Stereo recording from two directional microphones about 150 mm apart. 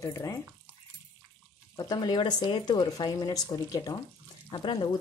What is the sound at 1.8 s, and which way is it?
A woman's voice, 25° left (ahead or behind).